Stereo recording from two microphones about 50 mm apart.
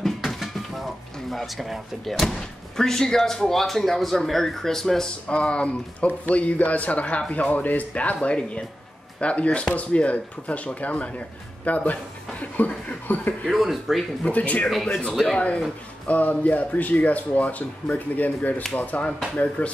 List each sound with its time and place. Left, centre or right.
0.0 s music: centre
1.3 s speech: centre
5.3 s speech: left
13.5 s speech: centre
14.2 s speech: left